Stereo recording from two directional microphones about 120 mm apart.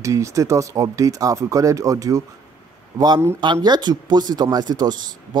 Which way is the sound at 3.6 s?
35° right (ahead or behind).